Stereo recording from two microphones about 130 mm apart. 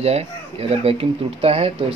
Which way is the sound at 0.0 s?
55° right (ahead or behind).